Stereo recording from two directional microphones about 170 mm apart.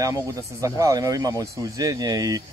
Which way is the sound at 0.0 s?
20° right (ahead or behind).